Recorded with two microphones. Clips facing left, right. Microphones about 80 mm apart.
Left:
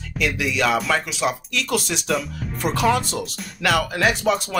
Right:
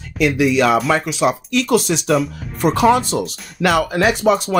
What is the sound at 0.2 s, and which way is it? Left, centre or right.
Speech, right.